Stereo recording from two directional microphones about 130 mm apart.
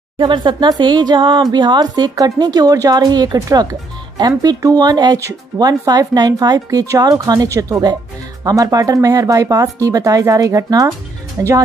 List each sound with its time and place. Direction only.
0.2 s speech: 35° right (ahead or behind); by 11.5 s 15° right (ahead or behind)